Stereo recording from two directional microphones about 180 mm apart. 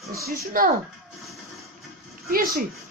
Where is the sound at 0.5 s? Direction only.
50° right (ahead or behind).